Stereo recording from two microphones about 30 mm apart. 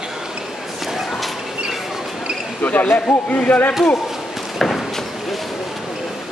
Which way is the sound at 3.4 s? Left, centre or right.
Left.